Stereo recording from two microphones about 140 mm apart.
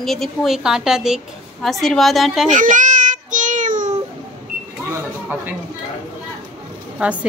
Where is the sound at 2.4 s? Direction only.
65° right (ahead or behind).